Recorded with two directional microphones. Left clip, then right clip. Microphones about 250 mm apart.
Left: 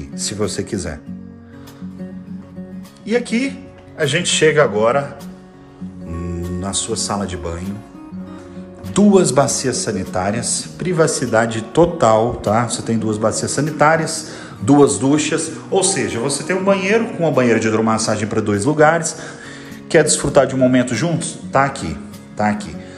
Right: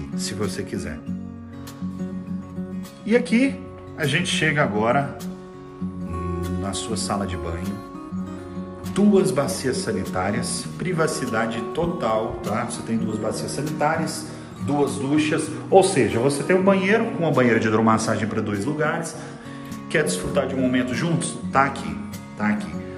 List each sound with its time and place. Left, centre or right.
0.1 s speech: centre
3.1 s a man's voice: centre
4.0 s speech: centre
6.6 s speech: centre
8.9 s speech: centre
15.0 s speech: centre
15.3 s a man's voice: centre